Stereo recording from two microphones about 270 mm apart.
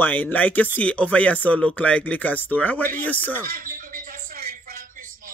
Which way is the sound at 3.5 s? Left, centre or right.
Right.